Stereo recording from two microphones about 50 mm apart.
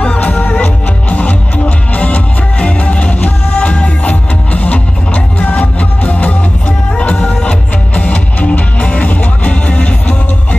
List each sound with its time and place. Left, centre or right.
0.0 s music: left